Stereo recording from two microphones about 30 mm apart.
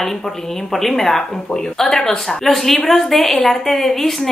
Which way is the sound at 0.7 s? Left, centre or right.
Centre.